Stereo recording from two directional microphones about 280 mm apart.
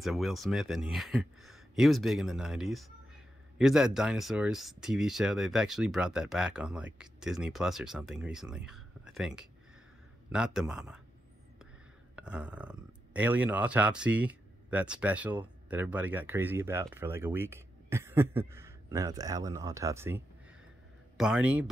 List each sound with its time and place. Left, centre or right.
0.0 s speech: centre
12.2 s speech: centre